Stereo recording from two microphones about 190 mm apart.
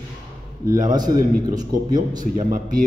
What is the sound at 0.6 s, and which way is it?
Speech, 45° right (ahead or behind).